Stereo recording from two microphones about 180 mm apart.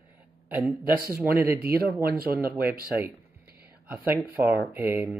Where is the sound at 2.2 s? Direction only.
55° right (ahead or behind).